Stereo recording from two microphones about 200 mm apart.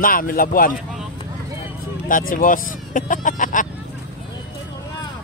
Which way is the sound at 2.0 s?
45° left (ahead or behind).